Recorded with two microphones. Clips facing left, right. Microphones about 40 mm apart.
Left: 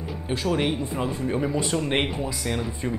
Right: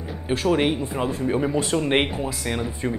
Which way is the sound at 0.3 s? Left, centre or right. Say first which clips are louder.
Right 4 dB; centre.